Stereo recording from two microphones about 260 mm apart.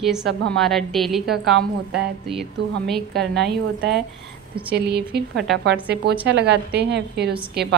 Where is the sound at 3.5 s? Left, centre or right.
Right.